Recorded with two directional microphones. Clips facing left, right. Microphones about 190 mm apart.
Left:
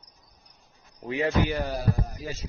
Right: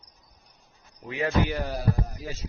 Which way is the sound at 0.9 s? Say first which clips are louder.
Left 2 dB; 30° left (ahead or behind).